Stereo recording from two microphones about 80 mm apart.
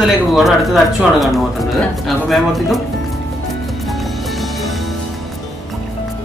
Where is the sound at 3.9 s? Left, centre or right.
Centre.